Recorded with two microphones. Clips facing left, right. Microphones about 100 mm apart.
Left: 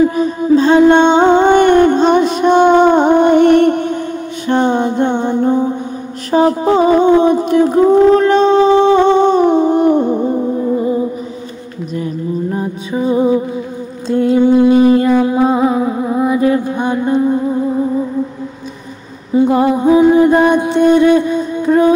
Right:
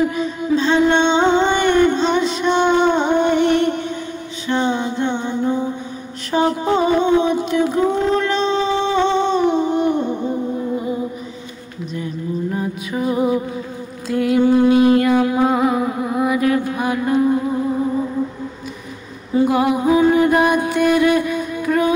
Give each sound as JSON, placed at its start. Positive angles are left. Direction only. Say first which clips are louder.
{"t": 0.1, "sound": "music", "louder": "left 7 dB", "side_deg": 45}
{"t": 6.3, "sound": "a sound", "louder": "left 6 dB", "side_deg": 35}
{"t": 9.2, "sound": "music", "louder": "left 6 dB", "side_deg": 50}
{"t": 11.9, "sound": "a sound", "louder": "left 5 dB", "side_deg": 40}
{"t": 12.5, "sound": "music", "louder": "left 4 dB", "side_deg": 25}
{"t": 19.3, "sound": "music", "louder": "left 4 dB", "side_deg": 30}